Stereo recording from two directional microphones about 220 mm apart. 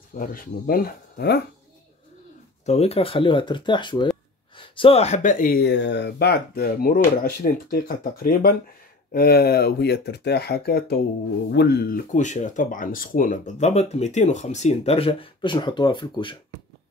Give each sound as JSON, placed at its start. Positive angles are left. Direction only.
{"t": 0.1, "sound": "speech", "side_deg": 40}
{"t": 2.6, "sound": "speech", "side_deg": 30}